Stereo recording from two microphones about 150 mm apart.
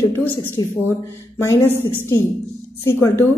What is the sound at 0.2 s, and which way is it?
A woman's voice, 10° left (ahead or behind).